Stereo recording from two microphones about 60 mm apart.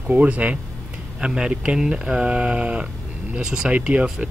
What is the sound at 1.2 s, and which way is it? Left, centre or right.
Speech, centre.